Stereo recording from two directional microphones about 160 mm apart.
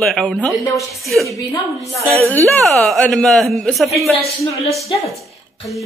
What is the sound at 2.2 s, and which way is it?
Speech, 15° left (ahead or behind).